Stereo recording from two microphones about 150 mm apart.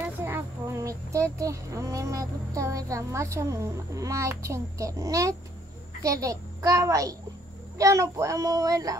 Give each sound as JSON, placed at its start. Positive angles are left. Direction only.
{"t": 0.0, "sound": "speech", "side_deg": -15}